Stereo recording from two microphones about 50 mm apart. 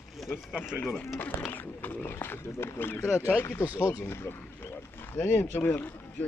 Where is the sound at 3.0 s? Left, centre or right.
Left.